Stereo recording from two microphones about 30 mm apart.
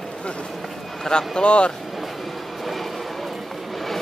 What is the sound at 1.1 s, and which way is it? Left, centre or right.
Speech, centre.